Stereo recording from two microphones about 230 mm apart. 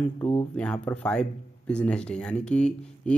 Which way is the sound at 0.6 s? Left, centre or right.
Centre.